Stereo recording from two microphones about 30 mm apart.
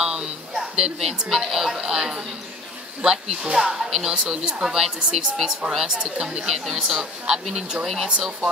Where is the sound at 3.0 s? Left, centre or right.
Right.